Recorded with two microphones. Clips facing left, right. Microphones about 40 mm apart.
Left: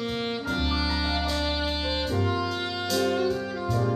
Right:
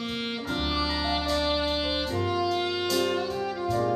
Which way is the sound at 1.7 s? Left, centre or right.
Centre.